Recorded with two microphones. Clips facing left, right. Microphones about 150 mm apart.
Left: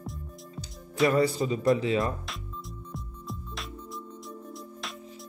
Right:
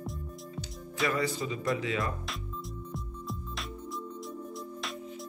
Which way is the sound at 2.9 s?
Centre (ahead or behind).